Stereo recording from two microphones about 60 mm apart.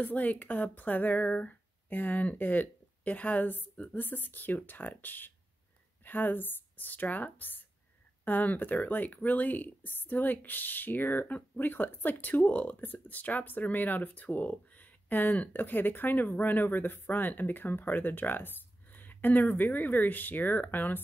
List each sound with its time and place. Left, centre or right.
0.0 s speech: left